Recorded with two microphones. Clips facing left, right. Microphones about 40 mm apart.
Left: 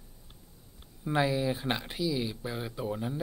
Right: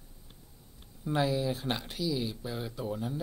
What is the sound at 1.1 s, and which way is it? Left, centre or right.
Speech, centre.